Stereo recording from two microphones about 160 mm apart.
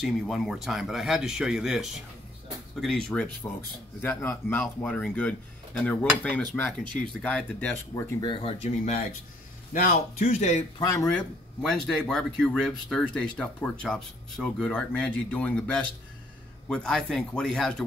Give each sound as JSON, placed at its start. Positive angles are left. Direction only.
{"t": 0.0, "sound": "speech", "side_deg": 0}
{"t": 8.2, "sound": "speech", "side_deg": 30}
{"t": 8.6, "sound": "speech", "side_deg": 45}
{"t": 9.7, "sound": "a man's voice", "side_deg": 55}
{"t": 10.8, "sound": "speech", "side_deg": 20}
{"t": 11.1, "sound": "speech", "side_deg": 5}